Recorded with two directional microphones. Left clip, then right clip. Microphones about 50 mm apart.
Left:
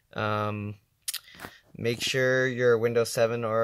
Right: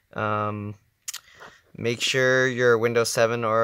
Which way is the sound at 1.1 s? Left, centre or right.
Right.